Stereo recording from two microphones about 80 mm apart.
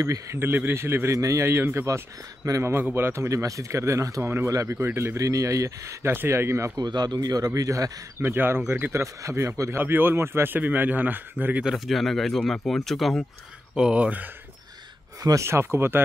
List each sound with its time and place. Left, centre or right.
0.0 s speech: right
0.5 s speech: right
4.7 s speech: right
6.8 s speech: right
8.2 s speech: right
9.3 s speech: right
11.6 s speech: centre
13.7 s speech: centre
15.4 s speech: right